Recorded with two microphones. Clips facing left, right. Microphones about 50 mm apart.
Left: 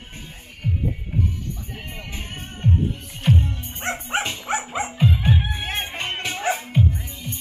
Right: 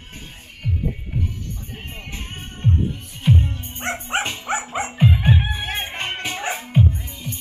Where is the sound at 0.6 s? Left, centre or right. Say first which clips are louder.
Left 1 dB; centre.